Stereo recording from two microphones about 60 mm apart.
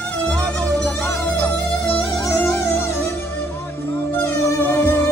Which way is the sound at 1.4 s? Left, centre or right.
Centre.